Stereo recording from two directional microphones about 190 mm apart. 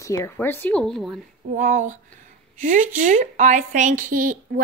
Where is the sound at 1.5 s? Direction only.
45° right (ahead or behind).